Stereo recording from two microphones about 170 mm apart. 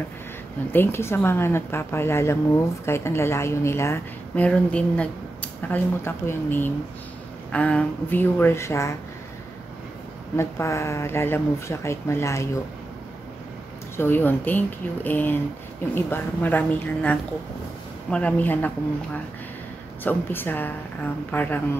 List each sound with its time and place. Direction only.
0.7 s a woman's voice: 15° left (ahead or behind)
10.3 s a woman's voice: 15° left (ahead or behind)
13.9 s a woman's voice: 10° left (ahead or behind)
20.0 s a woman's voice: 10° left (ahead or behind)